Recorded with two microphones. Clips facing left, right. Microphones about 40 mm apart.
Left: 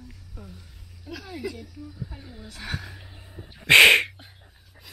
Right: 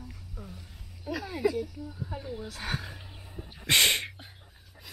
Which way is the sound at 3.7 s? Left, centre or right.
Left.